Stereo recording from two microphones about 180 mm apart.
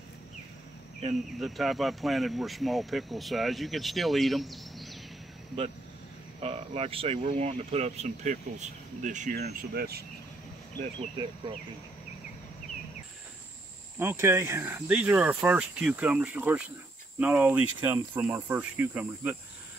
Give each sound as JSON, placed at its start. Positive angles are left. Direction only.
{"t": 1.4, "sound": "speech", "side_deg": 0}
{"t": 6.4, "sound": "speech", "side_deg": -35}
{"t": 9.4, "sound": "speech", "side_deg": -60}
{"t": 13.9, "sound": "speech", "side_deg": -15}